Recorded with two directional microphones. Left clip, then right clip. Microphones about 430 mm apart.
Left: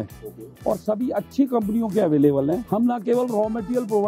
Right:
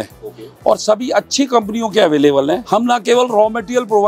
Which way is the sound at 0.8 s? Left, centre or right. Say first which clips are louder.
Right 10 dB; centre.